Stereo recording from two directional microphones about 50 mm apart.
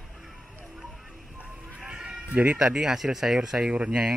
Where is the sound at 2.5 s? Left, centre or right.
Centre.